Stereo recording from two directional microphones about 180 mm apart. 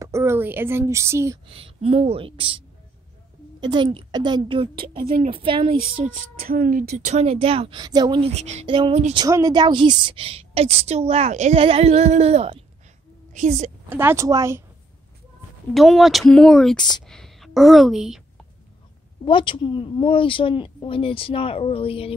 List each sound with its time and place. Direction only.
0.0 s speech: 15° right (ahead or behind)
1.5 s a woman's voice: 30° right (ahead or behind)
3.6 s a woman's voice: 25° right (ahead or behind)
6.0 s a woman's voice: 45° right (ahead or behind); by 9.2 s 30° right (ahead or behind)
9.2 s a woman's voice: 20° right (ahead or behind); by 13.7 s 40° right (ahead or behind)
13.8 s speech: 10° right (ahead or behind)
15.7 s a woman's voice: centre (ahead or behind)
19.2 s a woman's voice: 25° left (ahead or behind)